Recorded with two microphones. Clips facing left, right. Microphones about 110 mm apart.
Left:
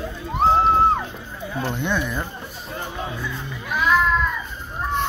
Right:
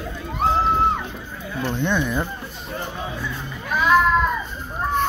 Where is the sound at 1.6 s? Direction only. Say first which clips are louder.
Right 3 dB; 10° left (ahead or behind).